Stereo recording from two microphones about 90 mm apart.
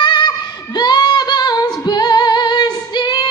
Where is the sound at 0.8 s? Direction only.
55° left (ahead or behind).